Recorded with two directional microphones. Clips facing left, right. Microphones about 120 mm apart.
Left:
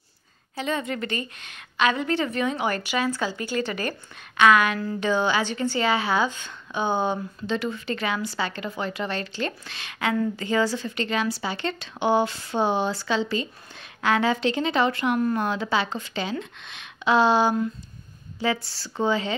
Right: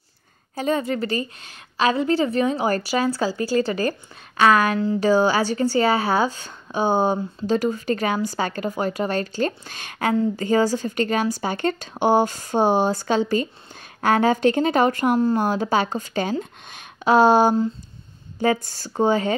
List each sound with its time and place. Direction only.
0.6 s a woman's voice: 40° right (ahead or behind)
15.1 s speech: 30° right (ahead or behind)
15.5 s speech: 45° right (ahead or behind)